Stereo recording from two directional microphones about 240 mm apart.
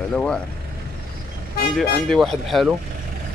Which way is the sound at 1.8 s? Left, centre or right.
Centre.